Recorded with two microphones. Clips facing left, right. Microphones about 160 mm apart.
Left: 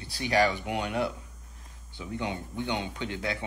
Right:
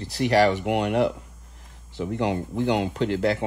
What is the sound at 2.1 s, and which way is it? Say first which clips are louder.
Speech: right 7 dB; 85° right.